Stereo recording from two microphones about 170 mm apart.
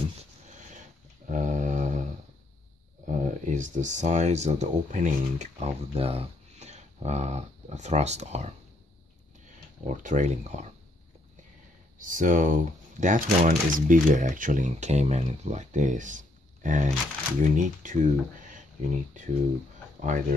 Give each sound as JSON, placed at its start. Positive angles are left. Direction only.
{"t": 0.7, "sound": "dog", "side_deg": -50}
{"t": 3.1, "sound": "speech", "side_deg": -50}
{"t": 9.8, "sound": "speech", "side_deg": -45}
{"t": 12.0, "sound": "speech", "side_deg": -50}